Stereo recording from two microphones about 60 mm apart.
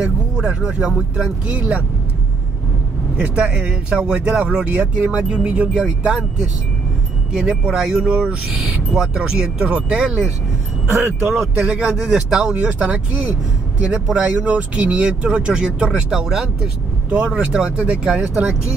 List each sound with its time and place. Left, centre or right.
0.4 s speech: centre
1.5 s speech: right
3.2 s speech: centre
11.2 s speech: centre
12.6 s speech: centre
17.1 s speech: centre